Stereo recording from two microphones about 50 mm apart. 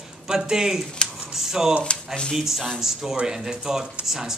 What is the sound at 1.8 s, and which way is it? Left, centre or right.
Speech, centre.